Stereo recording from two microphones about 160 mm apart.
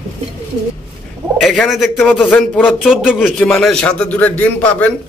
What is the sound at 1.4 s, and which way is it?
A man's voice, centre (ahead or behind).